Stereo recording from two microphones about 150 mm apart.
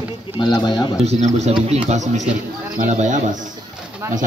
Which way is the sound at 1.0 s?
50° right (ahead or behind).